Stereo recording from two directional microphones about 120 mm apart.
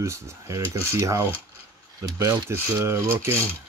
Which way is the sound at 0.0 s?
25° right (ahead or behind).